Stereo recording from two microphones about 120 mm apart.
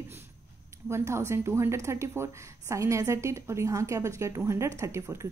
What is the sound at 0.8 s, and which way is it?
Speech, 20° right (ahead or behind).